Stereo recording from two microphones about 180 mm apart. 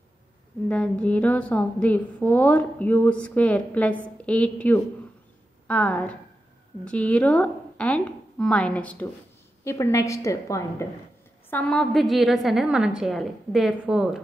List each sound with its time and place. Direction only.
0.7 s a woman's voice: 5° left (ahead or behind)
11.5 s a woman's voice: 5° left (ahead or behind)